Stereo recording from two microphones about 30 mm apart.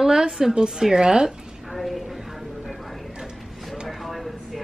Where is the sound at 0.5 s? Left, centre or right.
Right.